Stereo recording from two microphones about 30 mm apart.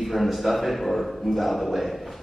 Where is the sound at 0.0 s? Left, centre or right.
Centre.